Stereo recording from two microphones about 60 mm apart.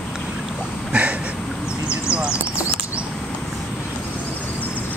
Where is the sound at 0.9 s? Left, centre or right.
Right.